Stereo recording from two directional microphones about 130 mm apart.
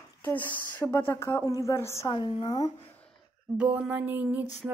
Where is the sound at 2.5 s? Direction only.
30° left (ahead or behind).